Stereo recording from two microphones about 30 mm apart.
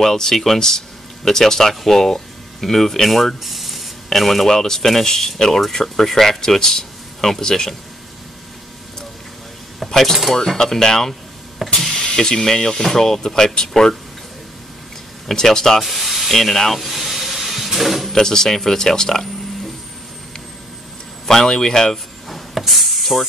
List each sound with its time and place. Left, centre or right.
0.0 s speech: centre
4.5 s speech: centre
9.8 s speech: centre
10.6 s speech: left
15.3 s speech: centre
15.8 s speech: centre
16.3 s speech: centre
16.8 s vehicle: centre
18.1 s speech: centre
21.3 s speech: centre
21.9 s a sound: centre
22.6 s spray: centre